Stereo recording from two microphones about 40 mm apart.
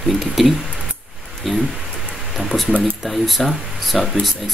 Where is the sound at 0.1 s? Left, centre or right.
Centre.